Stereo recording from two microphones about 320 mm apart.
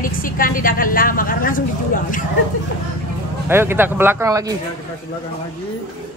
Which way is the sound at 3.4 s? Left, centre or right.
Centre.